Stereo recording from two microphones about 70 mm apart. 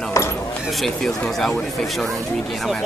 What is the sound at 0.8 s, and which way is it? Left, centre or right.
Speech, centre.